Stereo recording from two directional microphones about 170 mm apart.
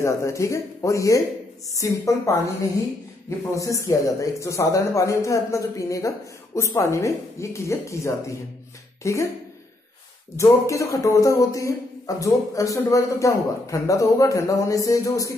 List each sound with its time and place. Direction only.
0.0 s speech: 15° left (ahead or behind)
10.3 s speech: 20° left (ahead or behind)